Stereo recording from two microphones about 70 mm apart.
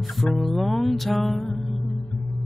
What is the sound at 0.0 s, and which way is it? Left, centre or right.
Music, centre.